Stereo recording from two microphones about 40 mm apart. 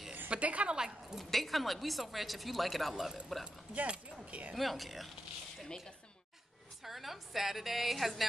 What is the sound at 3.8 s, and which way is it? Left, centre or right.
Speech, right.